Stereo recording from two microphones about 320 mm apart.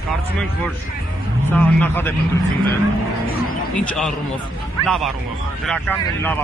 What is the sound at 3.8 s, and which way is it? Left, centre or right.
Speech, centre.